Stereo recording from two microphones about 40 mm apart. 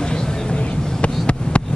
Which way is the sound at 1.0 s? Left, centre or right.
Left.